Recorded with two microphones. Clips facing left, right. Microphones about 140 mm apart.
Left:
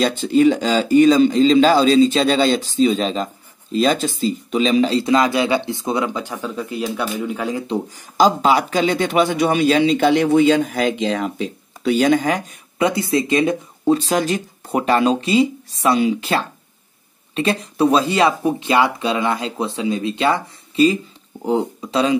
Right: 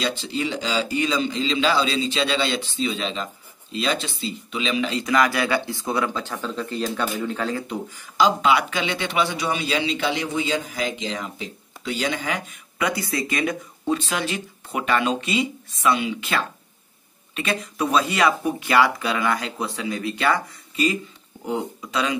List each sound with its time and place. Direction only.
0.0 s speech: 50° left (ahead or behind); by 7.6 s 15° left (ahead or behind)
7.6 s a man's voice: 30° left (ahead or behind)